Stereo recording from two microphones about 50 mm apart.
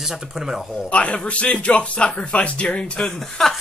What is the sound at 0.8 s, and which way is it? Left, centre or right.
Speech, left.